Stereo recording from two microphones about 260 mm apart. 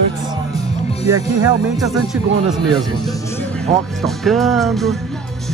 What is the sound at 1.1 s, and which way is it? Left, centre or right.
Speech, centre.